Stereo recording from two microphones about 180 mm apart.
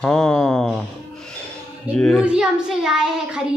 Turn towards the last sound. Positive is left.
turn(degrees=-5)  # may be behind; listen again after turning